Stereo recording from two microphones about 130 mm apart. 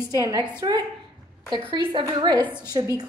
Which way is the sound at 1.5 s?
40° right (ahead or behind).